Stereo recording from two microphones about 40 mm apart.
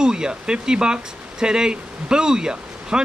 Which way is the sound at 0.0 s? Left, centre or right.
Centre.